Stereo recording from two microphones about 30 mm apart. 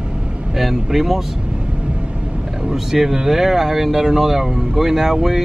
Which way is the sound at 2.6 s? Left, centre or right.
Centre.